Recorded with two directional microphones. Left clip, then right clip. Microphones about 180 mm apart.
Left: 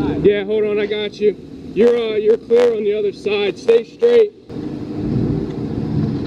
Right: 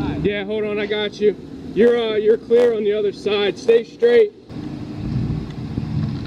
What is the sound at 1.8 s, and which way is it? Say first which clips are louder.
Speech: left 1 dB; 10° left (ahead or behind).